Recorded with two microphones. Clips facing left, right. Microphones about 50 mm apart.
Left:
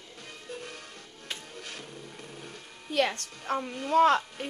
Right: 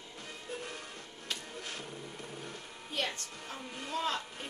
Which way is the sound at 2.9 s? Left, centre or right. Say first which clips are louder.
Left 9 dB; left.